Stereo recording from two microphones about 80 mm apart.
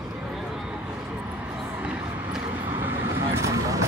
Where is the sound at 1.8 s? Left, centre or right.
Centre.